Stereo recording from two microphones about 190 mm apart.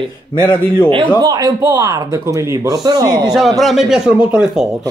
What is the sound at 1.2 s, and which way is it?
Speech, 20° right (ahead or behind).